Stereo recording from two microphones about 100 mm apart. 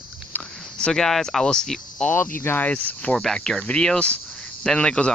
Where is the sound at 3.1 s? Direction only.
5° left (ahead or behind).